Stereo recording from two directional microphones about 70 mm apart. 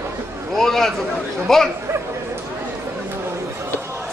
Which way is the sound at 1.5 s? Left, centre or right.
Centre.